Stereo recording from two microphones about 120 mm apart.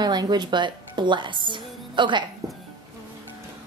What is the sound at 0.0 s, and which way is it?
A woman's voice, 35° right (ahead or behind).